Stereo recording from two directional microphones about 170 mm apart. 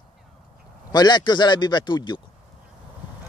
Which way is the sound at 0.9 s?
25° left (ahead or behind).